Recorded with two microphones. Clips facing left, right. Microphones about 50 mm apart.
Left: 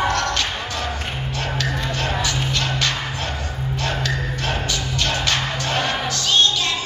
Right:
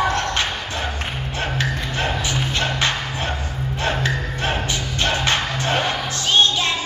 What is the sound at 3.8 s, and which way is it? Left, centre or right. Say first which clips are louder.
Music: right 2 dB; right.